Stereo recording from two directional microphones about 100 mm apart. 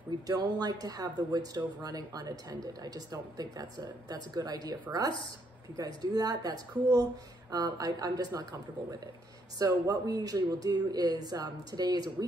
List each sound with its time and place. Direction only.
0.3 s speech: 40° right (ahead or behind)
5.8 s speech: 40° right (ahead or behind)
9.6 s speech: 40° right (ahead or behind)